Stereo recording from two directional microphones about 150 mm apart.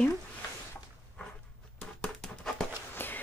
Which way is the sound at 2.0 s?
5° left (ahead or behind).